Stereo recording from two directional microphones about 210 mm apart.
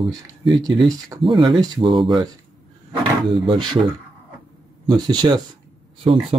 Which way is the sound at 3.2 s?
20° right (ahead or behind).